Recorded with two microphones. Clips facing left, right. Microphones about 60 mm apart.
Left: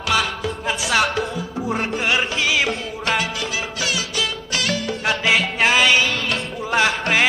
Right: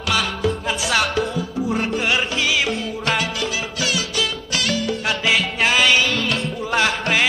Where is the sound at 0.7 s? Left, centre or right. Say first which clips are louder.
Left 5 dB; left.